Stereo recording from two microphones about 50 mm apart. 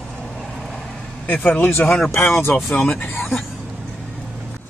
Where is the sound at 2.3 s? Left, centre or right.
Left.